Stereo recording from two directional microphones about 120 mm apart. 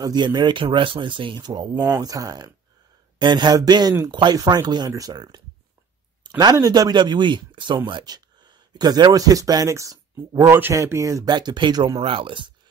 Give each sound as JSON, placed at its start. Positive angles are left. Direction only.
{"t": 0.0, "sound": "speech", "side_deg": -35}
{"t": 6.2, "sound": "a sound", "side_deg": -35}
{"t": 6.5, "sound": "speech", "side_deg": -30}